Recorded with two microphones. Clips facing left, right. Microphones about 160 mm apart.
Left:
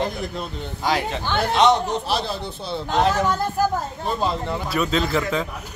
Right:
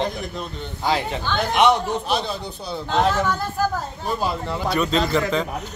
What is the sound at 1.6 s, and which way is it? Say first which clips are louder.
Speech: even; 20° left (ahead or behind).